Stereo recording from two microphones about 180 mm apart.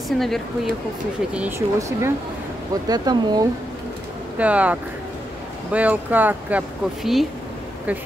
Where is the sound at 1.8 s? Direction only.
15° right (ahead or behind).